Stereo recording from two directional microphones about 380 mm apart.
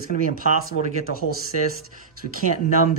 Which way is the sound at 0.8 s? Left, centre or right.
Left.